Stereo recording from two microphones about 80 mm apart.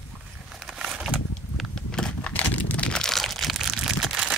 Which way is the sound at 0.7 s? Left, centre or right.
Centre.